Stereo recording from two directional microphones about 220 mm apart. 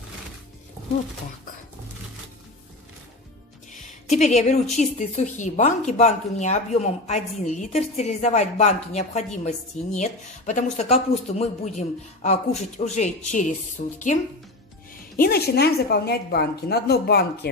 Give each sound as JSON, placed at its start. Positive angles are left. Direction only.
{"t": 4.1, "sound": "speech", "side_deg": 30}
{"t": 15.1, "sound": "a woman's voice", "side_deg": 45}